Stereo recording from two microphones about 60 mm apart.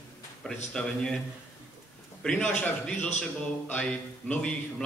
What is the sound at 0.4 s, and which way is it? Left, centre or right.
Speech, centre.